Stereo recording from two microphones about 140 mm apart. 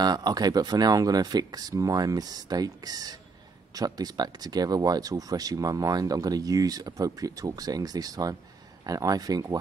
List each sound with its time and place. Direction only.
0.0 s speech: 30° right (ahead or behind)